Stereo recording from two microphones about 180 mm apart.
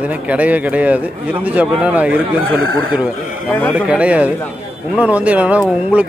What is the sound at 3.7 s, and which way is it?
Speech, 5° right (ahead or behind).